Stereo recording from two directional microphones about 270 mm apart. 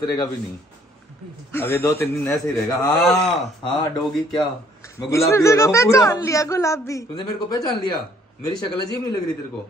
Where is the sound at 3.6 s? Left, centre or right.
Centre.